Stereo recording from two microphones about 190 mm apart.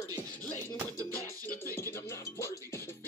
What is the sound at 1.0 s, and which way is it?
Music, 15° left (ahead or behind).